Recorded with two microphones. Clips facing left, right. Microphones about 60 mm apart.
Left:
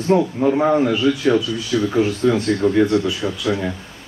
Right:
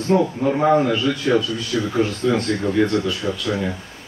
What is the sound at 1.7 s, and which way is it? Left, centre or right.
Speech, left.